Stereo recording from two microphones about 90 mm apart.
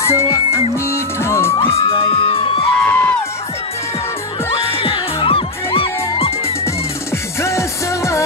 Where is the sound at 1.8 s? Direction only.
90° left.